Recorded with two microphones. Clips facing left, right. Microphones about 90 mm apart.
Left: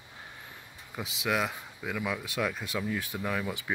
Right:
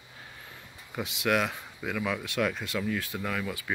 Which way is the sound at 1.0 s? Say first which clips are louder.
Right 3 dB; centre (ahead or behind).